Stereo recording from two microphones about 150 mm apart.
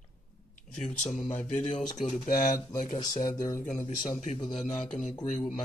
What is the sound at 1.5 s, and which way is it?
Speech, 50° left (ahead or behind).